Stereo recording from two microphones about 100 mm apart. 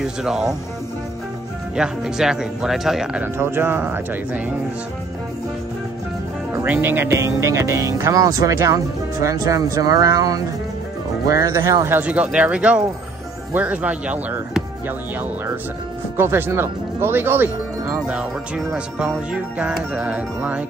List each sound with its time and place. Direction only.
0.0 s speech: 5° right (ahead or behind)
1.8 s speech: 5° right (ahead or behind)
3.2 s speech: 20° right (ahead or behind)
6.6 s speech: 20° right (ahead or behind)
11.9 s music: 15° right (ahead or behind)
16.2 s speech: 20° right (ahead or behind)
18.0 s music: 10° right (ahead or behind)